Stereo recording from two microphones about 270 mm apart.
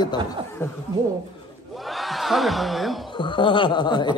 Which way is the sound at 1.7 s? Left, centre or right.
Centre.